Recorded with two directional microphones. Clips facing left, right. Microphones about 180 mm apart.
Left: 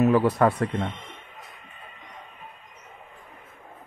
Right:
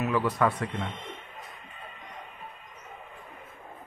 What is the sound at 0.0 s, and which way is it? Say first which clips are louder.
Speech: left 7 dB; 40° left (ahead or behind).